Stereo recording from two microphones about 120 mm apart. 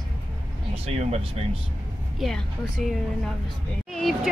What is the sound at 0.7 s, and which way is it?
Speech, 60° right (ahead or behind).